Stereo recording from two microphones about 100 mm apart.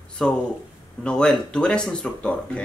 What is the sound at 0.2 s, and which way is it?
Speech, 10° left (ahead or behind).